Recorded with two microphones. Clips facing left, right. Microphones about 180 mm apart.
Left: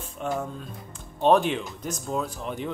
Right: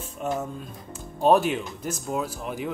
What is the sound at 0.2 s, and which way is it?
Speech, 5° right (ahead or behind).